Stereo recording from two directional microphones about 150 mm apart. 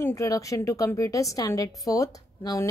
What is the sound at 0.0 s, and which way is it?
A woman's voice, 20° left (ahead or behind).